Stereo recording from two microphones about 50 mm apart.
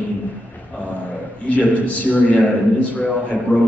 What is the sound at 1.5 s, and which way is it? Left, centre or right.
A man's voice, left.